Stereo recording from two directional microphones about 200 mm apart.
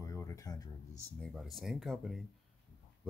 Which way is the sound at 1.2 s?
Centre (ahead or behind).